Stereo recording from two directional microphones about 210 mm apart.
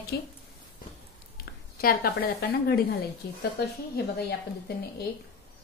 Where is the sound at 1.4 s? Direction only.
45° left (ahead or behind).